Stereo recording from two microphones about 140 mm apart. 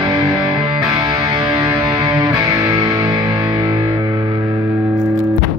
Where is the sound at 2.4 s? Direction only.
25° right (ahead or behind).